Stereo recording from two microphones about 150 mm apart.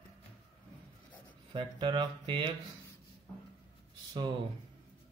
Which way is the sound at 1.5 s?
30° right (ahead or behind).